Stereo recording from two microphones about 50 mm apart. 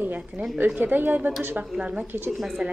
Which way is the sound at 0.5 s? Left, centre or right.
Right.